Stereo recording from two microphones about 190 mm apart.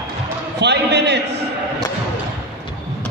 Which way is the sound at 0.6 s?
65° right (ahead or behind).